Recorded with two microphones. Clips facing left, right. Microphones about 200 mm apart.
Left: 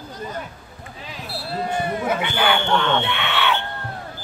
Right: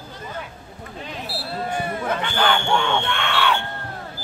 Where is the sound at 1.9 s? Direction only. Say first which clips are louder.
Left 1 dB; 10° left (ahead or behind).